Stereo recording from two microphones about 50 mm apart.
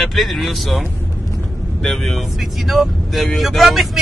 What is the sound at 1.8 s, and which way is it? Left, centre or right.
Speech, centre.